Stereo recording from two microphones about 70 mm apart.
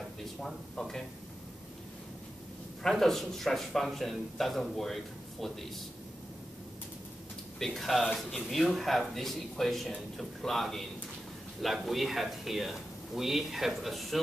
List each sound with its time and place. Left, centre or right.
0.2 s speech: centre
2.8 s a man's voice: centre
7.5 s a man's voice: centre